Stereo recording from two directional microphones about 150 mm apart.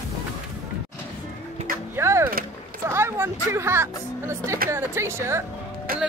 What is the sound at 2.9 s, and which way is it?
Speech, 15° right (ahead or behind).